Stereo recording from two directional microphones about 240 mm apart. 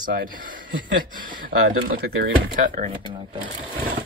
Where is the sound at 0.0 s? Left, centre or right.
Right.